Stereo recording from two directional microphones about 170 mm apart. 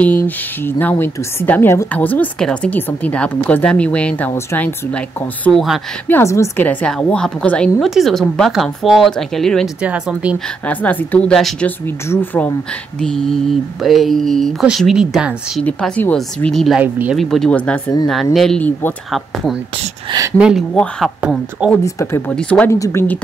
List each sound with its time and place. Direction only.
0.0 s a woman's voice: 10° left (ahead or behind)
6.0 s a woman's voice: 15° left (ahead or behind); by 10.3 s 5° right (ahead or behind)
10.7 s a woman's voice: 10° left (ahead or behind)
15.6 s speech: 10° left (ahead or behind); by 17.2 s 10° right (ahead or behind)
17.2 s speech: centre (ahead or behind)
20.3 s speech: 5° right (ahead or behind)
20.7 s speech: 5° left (ahead or behind)
21.2 s speech: 5° right (ahead or behind)
21.8 s speech: 20° left (ahead or behind)
22.3 s a woman's voice: 5° left (ahead or behind)